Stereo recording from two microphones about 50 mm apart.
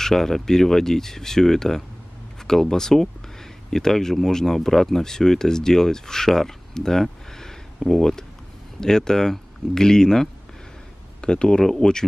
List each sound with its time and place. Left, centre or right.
0.0 s speech: centre